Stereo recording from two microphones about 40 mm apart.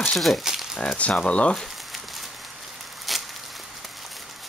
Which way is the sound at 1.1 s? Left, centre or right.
Left.